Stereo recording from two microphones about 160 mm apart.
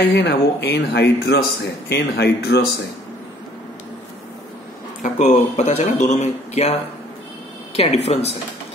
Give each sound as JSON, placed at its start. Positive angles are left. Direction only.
{"t": 0.1, "sound": "speech", "side_deg": 90}
{"t": 5.0, "sound": "a woman's voice", "side_deg": 50}